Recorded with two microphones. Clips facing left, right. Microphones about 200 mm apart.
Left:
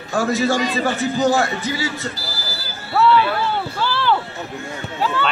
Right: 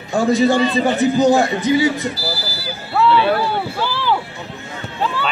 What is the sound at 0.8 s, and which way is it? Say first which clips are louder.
A man's voice: right 4 dB; 15° right (ahead or behind).